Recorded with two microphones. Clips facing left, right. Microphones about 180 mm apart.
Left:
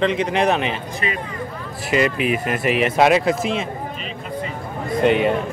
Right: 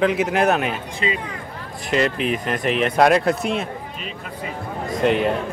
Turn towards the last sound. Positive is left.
turn(degrees=0)  # may be behind; listen again after turning